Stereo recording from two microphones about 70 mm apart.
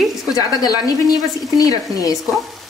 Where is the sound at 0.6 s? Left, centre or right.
Left.